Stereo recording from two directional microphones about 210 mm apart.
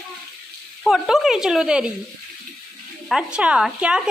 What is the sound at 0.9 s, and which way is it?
A woman's voice, centre (ahead or behind).